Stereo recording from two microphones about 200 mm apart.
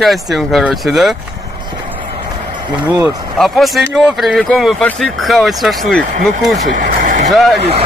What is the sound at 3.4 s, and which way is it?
Speech, centre (ahead or behind).